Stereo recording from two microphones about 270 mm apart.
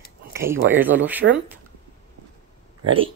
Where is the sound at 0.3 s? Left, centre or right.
Centre.